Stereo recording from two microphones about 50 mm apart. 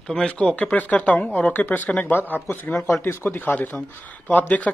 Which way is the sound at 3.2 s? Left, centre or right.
Left.